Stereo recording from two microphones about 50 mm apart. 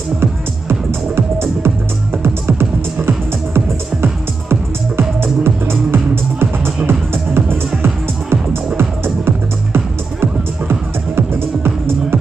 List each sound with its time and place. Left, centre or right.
0.2 s music: right
3.0 s music: right
8.7 s music: right